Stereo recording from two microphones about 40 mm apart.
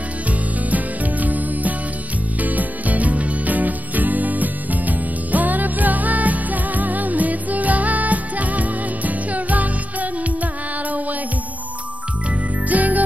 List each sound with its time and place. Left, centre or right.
0.7 s music: right
12.6 s music: right